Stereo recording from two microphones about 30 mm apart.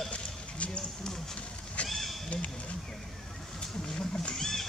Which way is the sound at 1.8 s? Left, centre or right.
Centre.